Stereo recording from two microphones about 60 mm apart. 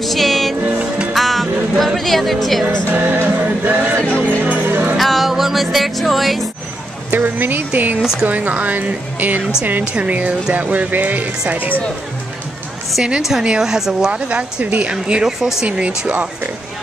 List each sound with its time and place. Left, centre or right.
0.0 s music: centre
0.7 s music: centre
1.1 s music: centre
2.9 s music: right
4.0 s music: left
4.4 s music: right
4.9 s music: centre
7.1 s speech: right
8.0 s speech: centre
8.3 s speech: right
13.4 s speech: centre
14.6 s speech: right